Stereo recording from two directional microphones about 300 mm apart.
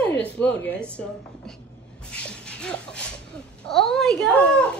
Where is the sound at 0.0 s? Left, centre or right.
Centre.